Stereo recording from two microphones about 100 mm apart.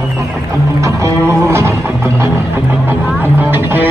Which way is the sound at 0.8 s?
30° right (ahead or behind).